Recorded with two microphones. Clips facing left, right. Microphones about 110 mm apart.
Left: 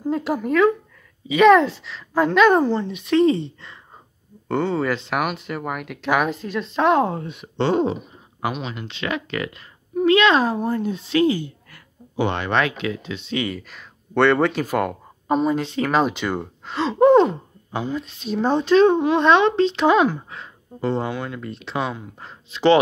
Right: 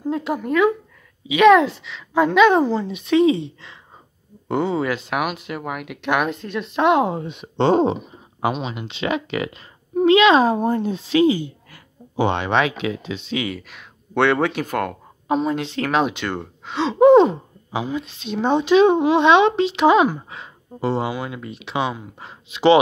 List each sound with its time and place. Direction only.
0.0 s speech: centre (ahead or behind); by 11.8 s 15° right (ahead or behind)
12.2 s gasp: 25° right (ahead or behind)
12.4 s speech: 10° right (ahead or behind)
13.3 s speech: 5° right (ahead or behind)
17.0 s gasp: 20° right (ahead or behind)
17.6 s speech: 5° right (ahead or behind)
18.6 s speech: 10° right (ahead or behind)